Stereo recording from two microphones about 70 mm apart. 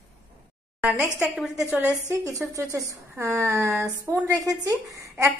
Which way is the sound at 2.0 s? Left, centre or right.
Right.